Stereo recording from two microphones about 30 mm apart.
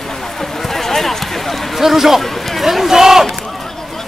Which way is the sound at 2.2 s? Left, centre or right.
Centre.